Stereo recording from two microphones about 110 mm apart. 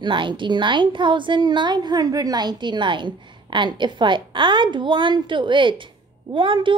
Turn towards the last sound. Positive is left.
turn(degrees=-45)  # may be behind; listen again after turning